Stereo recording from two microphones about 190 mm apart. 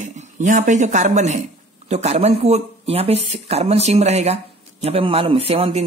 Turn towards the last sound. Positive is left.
turn(degrees=-30)  # may be behind; listen again after turning